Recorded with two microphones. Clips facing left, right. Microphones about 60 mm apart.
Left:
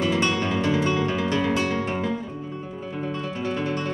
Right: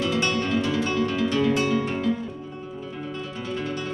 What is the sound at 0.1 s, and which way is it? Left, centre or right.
Music, left.